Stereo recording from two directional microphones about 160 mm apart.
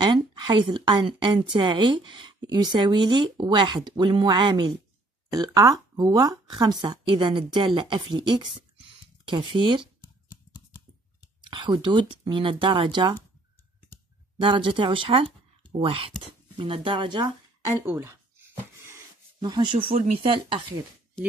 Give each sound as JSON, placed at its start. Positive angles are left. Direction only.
{"t": 0.0, "sound": "speech", "side_deg": -25}
{"t": 11.4, "sound": "speech", "side_deg": -30}
{"t": 14.4, "sound": "speech", "side_deg": -30}
{"t": 17.6, "sound": "speech", "side_deg": -15}
{"t": 19.4, "sound": "speech", "side_deg": -30}